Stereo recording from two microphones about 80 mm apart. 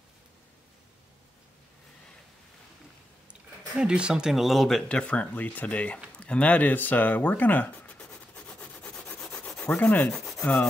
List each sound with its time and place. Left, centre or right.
3.7 s speech: centre
4.8 s speech: centre
8.0 s rub: centre
10.4 s speech: centre